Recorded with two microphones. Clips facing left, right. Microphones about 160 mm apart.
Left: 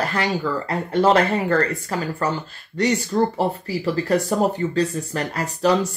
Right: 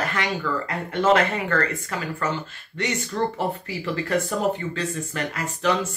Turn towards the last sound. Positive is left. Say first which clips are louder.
# left 4 dB
turn(degrees=35)  # may be behind; listen again after turning